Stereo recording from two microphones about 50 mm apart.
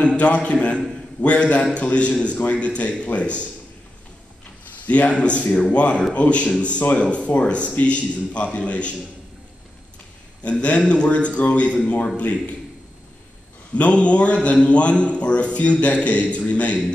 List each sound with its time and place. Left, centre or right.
0.0 s a man's voice: left
4.8 s a man's voice: left
10.4 s a man's voice: left
13.7 s a man's voice: left